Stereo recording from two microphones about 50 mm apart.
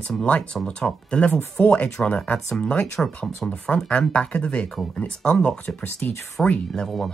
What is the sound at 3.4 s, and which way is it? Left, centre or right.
Speech, centre.